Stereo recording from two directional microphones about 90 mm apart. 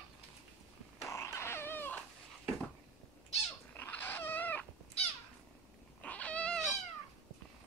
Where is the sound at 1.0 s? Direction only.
30° left (ahead or behind).